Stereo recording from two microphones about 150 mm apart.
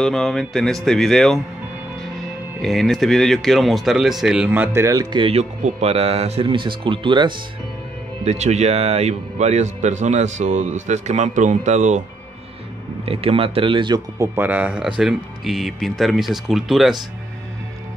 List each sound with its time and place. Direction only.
0.0 s speech: 5° left (ahead or behind)
2.6 s speech: centre (ahead or behind)
4.5 s speech: 15° right (ahead or behind)
5.2 s speech: 45° right (ahead or behind)
8.2 s speech: 45° right (ahead or behind)
13.0 s speech: 40° right (ahead or behind)
14.1 s speech: 15° right (ahead or behind); by 16.9 s centre (ahead or behind)